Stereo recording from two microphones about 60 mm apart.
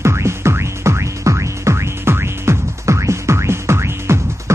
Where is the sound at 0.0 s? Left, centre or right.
Right.